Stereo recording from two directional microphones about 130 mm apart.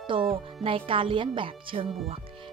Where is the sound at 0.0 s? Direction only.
40° right (ahead or behind).